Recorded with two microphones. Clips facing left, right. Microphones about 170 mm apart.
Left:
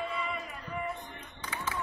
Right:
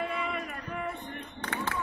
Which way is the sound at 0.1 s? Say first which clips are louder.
Right 3 dB; 60° right (ahead or behind).